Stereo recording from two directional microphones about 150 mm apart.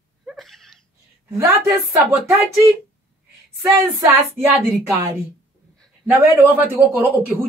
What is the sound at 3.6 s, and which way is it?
Speech, 15° right (ahead or behind).